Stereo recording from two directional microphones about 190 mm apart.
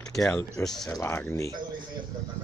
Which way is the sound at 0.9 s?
15° left (ahead or behind).